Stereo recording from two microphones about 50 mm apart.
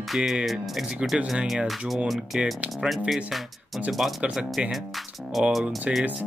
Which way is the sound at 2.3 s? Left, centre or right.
Centre.